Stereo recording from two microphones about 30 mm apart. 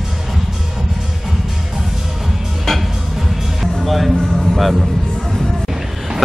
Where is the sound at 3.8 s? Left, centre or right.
Centre.